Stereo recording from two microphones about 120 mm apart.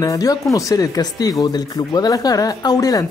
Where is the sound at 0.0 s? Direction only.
30° left (ahead or behind).